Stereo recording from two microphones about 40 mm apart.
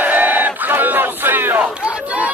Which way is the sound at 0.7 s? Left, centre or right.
Right.